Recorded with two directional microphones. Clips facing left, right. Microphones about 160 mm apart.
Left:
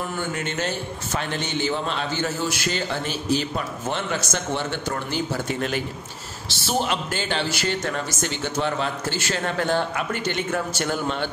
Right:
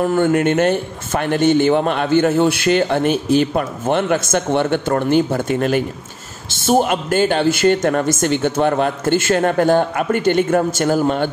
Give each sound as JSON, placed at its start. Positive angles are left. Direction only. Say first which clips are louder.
{"t": 0.0, "sound": "speech", "louder": "right 13 dB", "side_deg": -55}